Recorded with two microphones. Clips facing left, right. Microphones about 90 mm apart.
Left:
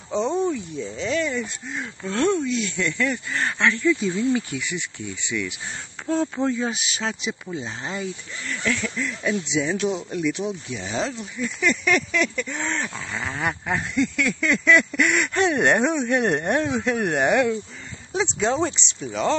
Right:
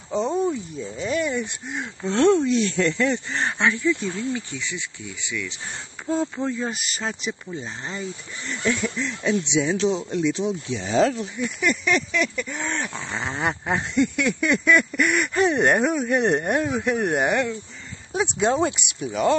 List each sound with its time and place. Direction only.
0.1 s cricket: 5° right (ahead or behind)
0.5 s a sound: 10° right (ahead or behind)
2.1 s speech: 30° right (ahead or behind)
4.6 s speech: 15° left (ahead or behind)
6.3 s speech: centre (ahead or behind)
8.5 s speech: 20° right (ahead or behind)
11.0 s speech: 40° right (ahead or behind)
11.6 s speech: 5° right (ahead or behind)
13.1 s a sound: 20° right (ahead or behind)